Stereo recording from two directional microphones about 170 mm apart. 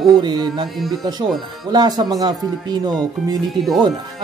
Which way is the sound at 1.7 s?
25° right (ahead or behind).